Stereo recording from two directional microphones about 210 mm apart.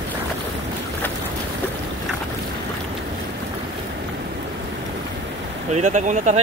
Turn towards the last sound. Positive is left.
turn(degrees=-35)  # may be behind; listen again after turning